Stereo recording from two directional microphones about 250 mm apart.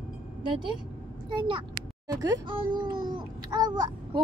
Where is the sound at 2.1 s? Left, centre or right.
Centre.